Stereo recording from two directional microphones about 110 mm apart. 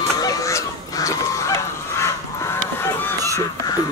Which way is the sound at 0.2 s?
30° left (ahead or behind).